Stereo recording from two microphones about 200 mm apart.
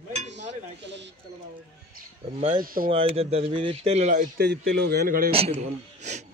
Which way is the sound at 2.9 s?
30° right (ahead or behind).